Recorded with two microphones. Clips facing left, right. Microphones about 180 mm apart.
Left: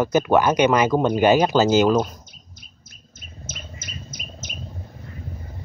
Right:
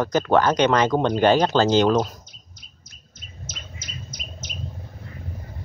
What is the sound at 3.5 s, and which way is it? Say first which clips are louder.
Bird: left 4 dB; 50° left (ahead or behind).